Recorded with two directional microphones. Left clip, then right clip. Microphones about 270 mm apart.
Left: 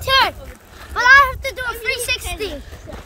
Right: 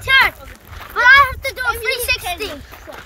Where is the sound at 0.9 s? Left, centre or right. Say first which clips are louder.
Right 1 dB; centre.